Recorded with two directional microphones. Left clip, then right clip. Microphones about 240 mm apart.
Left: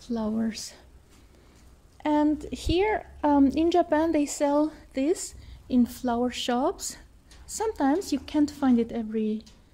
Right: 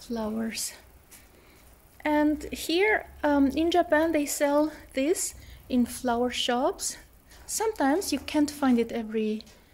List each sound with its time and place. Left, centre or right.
0.0 s a woman's voice: centre
2.0 s a woman's voice: centre